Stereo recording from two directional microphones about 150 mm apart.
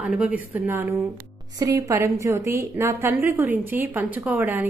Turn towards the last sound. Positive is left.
turn(degrees=-10)  # may be behind; listen again after turning